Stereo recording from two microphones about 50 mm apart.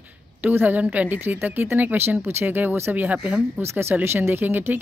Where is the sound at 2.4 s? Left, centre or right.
Right.